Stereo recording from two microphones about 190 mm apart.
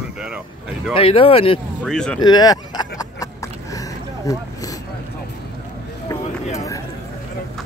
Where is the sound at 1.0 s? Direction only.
30° left (ahead or behind).